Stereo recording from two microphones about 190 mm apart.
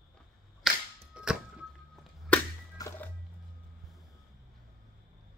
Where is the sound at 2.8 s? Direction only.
20° left (ahead or behind).